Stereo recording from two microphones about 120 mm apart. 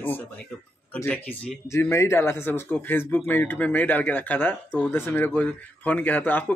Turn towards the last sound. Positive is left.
turn(degrees=15)  # may be behind; listen again after turning